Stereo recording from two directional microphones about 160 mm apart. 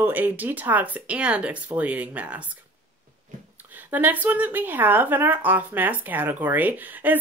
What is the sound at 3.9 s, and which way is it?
Speech, 10° right (ahead or behind).